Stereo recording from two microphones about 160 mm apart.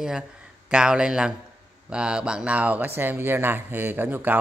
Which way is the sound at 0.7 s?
5° right (ahead or behind).